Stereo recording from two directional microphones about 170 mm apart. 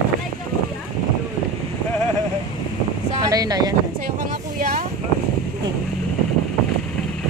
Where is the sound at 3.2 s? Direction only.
20° right (ahead or behind).